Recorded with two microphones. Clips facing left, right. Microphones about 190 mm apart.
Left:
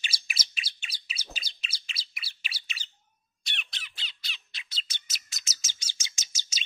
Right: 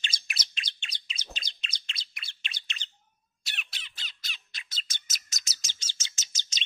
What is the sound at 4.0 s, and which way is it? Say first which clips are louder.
Bird: even; 45° right (ahead or behind).